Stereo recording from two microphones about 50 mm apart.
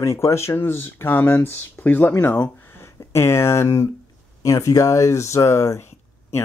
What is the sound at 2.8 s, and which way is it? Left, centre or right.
Speech, left.